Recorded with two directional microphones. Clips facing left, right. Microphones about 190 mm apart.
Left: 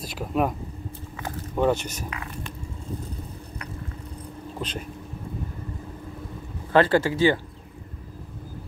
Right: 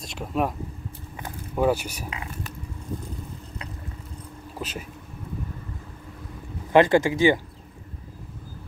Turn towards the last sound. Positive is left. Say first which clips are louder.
# right 1 dB
turn(degrees=-15)  # may be behind; listen again after turning